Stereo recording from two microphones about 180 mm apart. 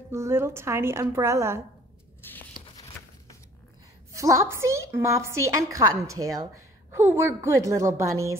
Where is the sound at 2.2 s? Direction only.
10° left (ahead or behind).